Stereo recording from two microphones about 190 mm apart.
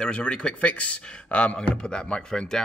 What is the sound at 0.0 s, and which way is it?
Speech, 5° left (ahead or behind).